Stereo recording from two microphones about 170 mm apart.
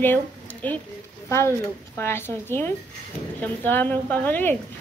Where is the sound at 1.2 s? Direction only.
15° left (ahead or behind).